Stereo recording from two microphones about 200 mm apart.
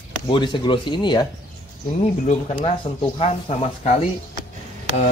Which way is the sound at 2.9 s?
25° left (ahead or behind).